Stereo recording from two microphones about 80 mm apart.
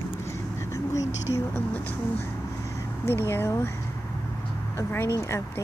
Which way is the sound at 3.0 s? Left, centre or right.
Left.